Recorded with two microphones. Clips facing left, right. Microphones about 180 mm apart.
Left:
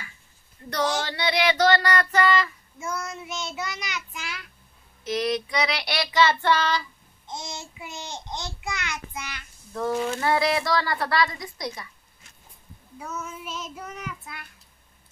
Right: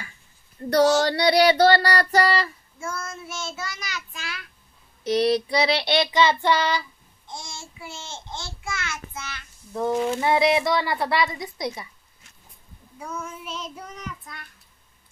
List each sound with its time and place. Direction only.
0.7 s child singing: 35° right (ahead or behind)
2.8 s child singing: 15° left (ahead or behind)
5.0 s a woman's voice: 35° right (ahead or behind); by 6.8 s 10° right (ahead or behind)
7.2 s babbling: 20° left (ahead or behind)
9.8 s a woman's voice: 20° right (ahead or behind)
13.0 s child singing: 5° left (ahead or behind)